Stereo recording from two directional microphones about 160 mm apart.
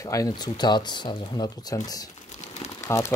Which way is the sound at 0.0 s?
20° left (ahead or behind).